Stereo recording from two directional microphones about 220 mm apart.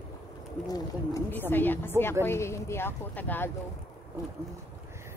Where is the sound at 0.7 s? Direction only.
15° left (ahead or behind).